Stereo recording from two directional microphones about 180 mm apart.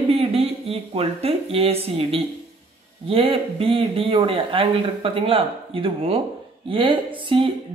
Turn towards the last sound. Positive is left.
turn(degrees=-30)  # may be behind; listen again after turning